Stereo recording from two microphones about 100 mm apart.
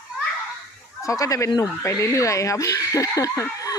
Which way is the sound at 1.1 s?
35° left (ahead or behind).